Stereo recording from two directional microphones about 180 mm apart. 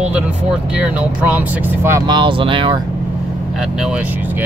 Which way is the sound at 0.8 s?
10° right (ahead or behind).